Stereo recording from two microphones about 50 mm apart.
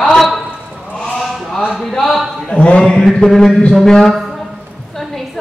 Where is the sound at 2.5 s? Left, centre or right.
Left.